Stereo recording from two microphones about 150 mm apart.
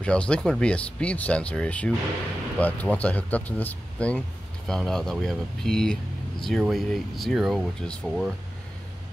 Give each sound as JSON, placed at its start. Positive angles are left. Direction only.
{"t": 0.0, "sound": "speech", "side_deg": 5}